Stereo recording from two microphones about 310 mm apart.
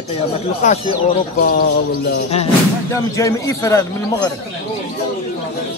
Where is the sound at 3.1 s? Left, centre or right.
Centre.